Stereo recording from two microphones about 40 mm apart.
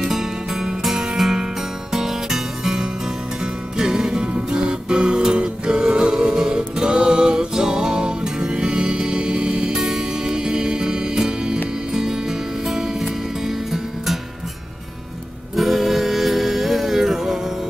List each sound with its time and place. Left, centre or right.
0.0 s music: centre
15.5 s music: centre